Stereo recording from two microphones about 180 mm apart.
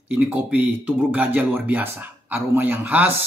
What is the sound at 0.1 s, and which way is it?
Speech, 10° right (ahead or behind).